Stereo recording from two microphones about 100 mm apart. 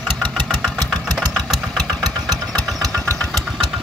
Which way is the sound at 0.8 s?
Centre (ahead or behind).